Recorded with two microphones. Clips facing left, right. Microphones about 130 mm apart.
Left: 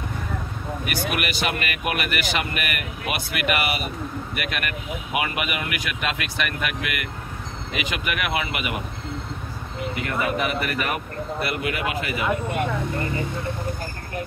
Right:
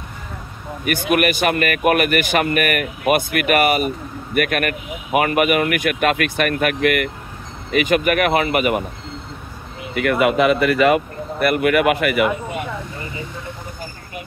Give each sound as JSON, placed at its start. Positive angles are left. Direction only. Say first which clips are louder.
{"t": 0.8, "sound": "speech", "louder": "right 10 dB", "side_deg": -50}
{"t": 9.9, "sound": "speech", "louder": "right 10 dB", "side_deg": -80}
{"t": 11.4, "sound": "speech", "louder": "right 13 dB", "side_deg": -60}